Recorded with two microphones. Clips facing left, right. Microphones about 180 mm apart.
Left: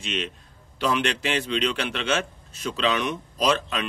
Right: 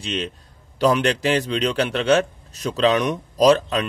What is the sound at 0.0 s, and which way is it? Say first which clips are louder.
A man's voice: right 4 dB; 35° right (ahead or behind).